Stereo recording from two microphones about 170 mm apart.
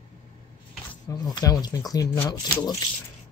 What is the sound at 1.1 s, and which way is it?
Speech, 20° left (ahead or behind).